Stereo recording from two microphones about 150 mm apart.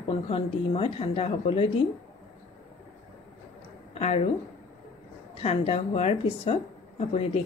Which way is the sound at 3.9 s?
40° left (ahead or behind).